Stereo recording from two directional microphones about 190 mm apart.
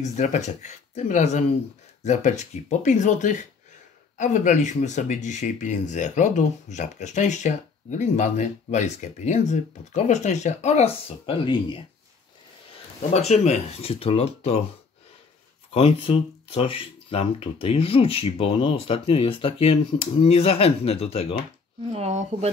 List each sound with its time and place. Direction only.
0.0 s speech: 40° left (ahead or behind)
13.1 s speech: 35° left (ahead or behind)
15.7 s speech: 30° left (ahead or behind)
21.9 s speech: 35° right (ahead or behind)